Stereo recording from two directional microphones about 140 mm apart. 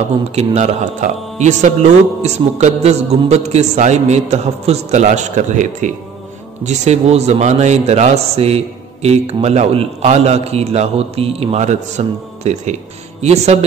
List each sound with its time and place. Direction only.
0.3 s speech: 50° right (ahead or behind)